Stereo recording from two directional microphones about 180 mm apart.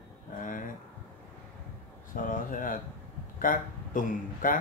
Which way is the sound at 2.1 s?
50° left (ahead or behind).